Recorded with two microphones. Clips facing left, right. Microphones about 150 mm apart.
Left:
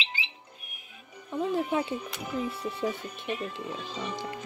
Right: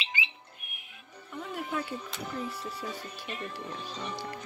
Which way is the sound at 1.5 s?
20° left (ahead or behind).